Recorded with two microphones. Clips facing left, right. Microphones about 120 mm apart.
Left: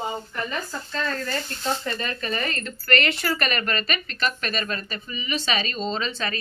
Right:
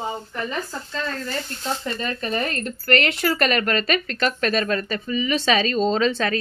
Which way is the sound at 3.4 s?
75° right (ahead or behind).